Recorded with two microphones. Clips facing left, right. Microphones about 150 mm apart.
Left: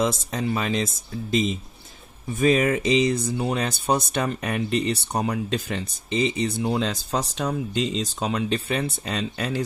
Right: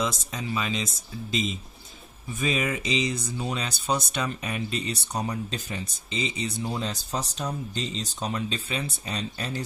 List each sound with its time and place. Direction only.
0.0 s speech: 55° left (ahead or behind)
2.3 s speech: 50° left (ahead or behind); by 5.9 s 85° left
6.0 s speech: 55° left (ahead or behind); by 9.6 s 90° left